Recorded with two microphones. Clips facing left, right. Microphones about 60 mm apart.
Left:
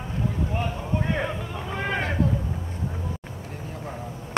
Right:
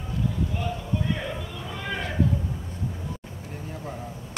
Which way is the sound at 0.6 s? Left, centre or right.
Left.